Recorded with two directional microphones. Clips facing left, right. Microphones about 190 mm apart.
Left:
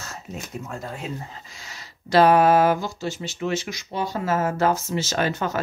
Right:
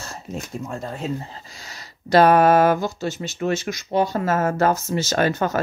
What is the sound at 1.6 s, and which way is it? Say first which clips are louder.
Speech: right 3 dB; 40° right (ahead or behind).